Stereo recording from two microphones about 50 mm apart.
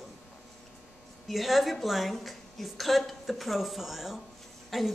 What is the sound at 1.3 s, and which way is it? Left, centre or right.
Speech, centre.